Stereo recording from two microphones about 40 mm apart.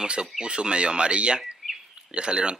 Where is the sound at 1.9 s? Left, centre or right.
Right.